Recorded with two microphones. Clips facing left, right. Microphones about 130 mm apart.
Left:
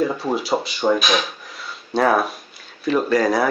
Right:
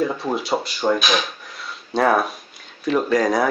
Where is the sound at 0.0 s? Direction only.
Centre (ahead or behind).